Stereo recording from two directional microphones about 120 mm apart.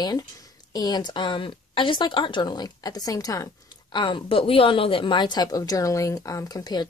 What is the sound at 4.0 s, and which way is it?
Speech, 45° left (ahead or behind).